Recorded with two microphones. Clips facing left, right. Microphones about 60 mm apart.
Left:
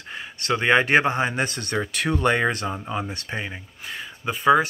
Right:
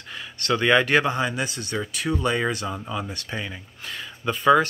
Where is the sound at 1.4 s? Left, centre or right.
Left.